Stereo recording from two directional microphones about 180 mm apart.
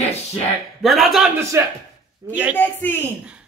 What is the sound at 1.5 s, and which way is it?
Speech, 15° right (ahead or behind).